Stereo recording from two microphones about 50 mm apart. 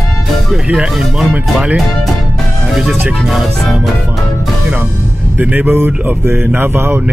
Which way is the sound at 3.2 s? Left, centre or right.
Centre.